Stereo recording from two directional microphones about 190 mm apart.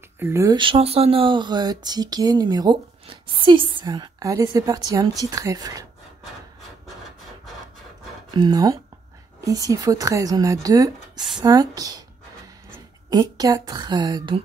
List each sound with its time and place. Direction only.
0.2 s speech: 15° right (ahead or behind)
8.3 s speech: 20° right (ahead or behind)